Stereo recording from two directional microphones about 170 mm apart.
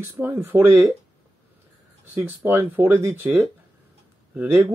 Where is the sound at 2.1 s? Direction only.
10° right (ahead or behind).